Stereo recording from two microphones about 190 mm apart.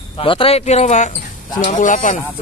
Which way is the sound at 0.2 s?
30° left (ahead or behind).